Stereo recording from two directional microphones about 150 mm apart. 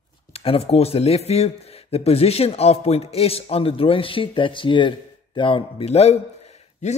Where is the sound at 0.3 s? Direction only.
40° left (ahead or behind).